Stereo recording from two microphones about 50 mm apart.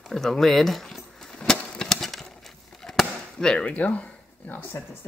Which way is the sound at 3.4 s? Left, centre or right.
Centre.